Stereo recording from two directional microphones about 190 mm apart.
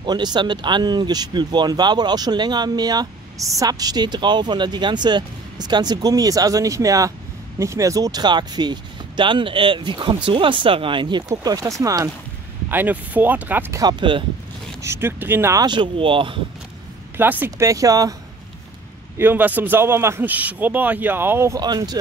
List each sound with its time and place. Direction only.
0.0 s a man's voice: 20° right (ahead or behind)
14.8 s a man's voice: 15° right (ahead or behind)
17.2 s a man's voice: 10° right (ahead or behind)
19.1 s a man's voice: 10° right (ahead or behind)